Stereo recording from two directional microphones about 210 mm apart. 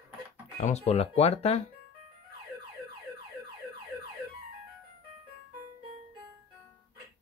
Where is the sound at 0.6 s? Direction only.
30° left (ahead or behind).